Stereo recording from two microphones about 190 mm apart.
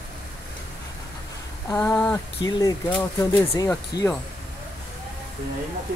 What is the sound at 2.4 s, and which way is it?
Speech, 20° left (ahead or behind).